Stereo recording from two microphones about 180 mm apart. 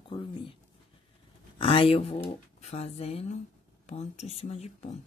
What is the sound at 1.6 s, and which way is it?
Speech, 30° left (ahead or behind).